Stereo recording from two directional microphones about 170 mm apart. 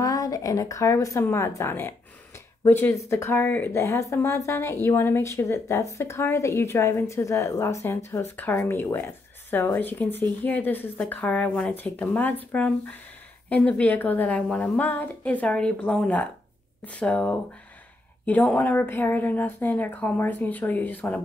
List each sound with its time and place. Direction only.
0.0 s a woman's voice: 20° left (ahead or behind)